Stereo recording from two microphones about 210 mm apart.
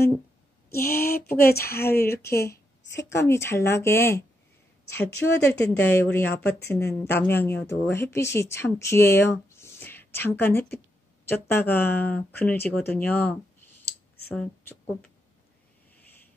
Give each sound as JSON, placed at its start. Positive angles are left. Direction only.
{"t": 0.7, "sound": "a woman's voice", "side_deg": 10}
{"t": 1.0, "sound": "speech", "side_deg": 45}
{"t": 2.9, "sound": "a woman's voice", "side_deg": 15}